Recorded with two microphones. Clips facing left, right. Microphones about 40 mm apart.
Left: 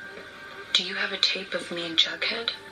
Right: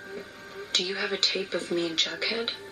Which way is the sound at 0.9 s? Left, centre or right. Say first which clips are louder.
Left 1 dB; left.